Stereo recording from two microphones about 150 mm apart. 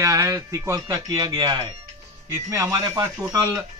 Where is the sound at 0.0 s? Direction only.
20° right (ahead or behind).